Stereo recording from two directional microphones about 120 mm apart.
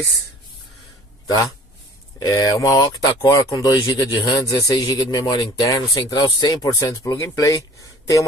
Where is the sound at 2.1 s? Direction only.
30° left (ahead or behind).